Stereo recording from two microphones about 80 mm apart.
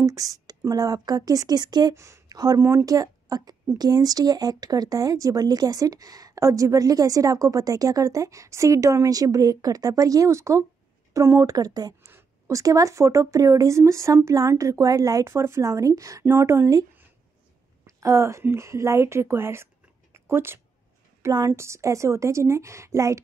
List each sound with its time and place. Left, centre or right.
0.0 s speech: right
2.0 s speech: right
2.2 s speech: right
2.6 s a woman's voice: right
17.8 s a woman's voice: right